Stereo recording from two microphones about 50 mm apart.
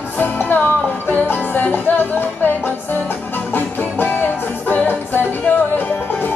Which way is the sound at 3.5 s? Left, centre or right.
Left.